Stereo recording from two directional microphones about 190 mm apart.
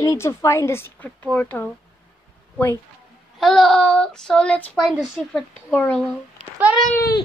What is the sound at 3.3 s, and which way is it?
A woman's voice, centre (ahead or behind).